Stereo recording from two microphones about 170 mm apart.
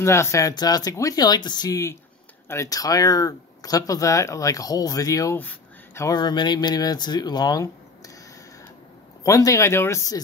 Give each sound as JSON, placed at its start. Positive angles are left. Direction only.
{"t": 0.0, "sound": "speech", "side_deg": 15}
{"t": 9.2, "sound": "speech", "side_deg": 20}